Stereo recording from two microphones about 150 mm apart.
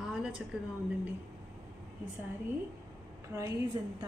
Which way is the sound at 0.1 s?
5° right (ahead or behind).